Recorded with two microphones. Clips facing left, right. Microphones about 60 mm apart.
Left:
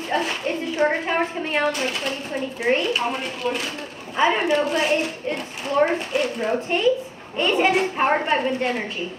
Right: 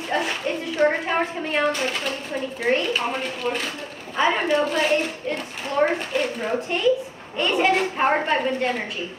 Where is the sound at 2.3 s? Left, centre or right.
Centre.